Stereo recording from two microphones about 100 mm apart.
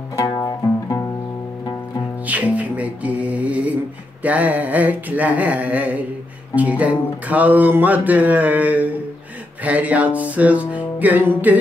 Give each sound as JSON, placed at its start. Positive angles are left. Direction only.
{"t": 0.2, "sound": "music", "side_deg": 35}
{"t": 2.2, "sound": "music", "side_deg": -15}